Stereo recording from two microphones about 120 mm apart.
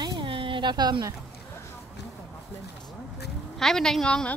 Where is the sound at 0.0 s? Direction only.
40° right (ahead or behind).